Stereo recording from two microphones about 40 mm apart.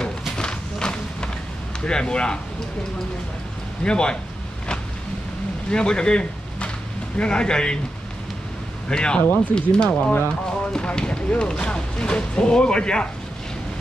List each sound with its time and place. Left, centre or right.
0.4 s a sound: centre
1.9 s speech: left
3.8 s speech: left
5.7 s speech: centre
8.8 s speech: left